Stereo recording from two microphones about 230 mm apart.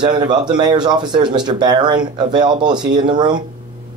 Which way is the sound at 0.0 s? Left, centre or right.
Centre.